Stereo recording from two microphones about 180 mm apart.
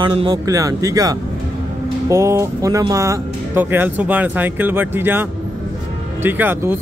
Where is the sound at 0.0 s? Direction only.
25° right (ahead or behind).